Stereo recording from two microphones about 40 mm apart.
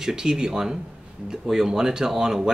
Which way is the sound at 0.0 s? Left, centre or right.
Centre.